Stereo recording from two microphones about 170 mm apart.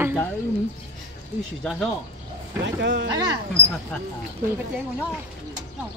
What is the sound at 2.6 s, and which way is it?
Speech, 90° right.